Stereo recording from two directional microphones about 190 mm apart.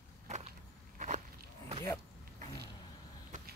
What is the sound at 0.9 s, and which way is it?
Walk, 40° right (ahead or behind).